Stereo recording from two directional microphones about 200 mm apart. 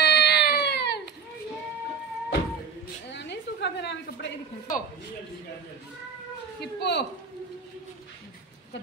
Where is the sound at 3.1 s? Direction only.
60° left (ahead or behind).